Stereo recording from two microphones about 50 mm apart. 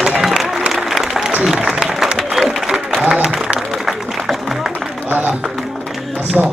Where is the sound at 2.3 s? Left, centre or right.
Centre.